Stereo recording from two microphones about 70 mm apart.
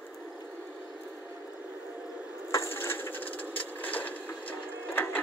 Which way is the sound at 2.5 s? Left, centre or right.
Left.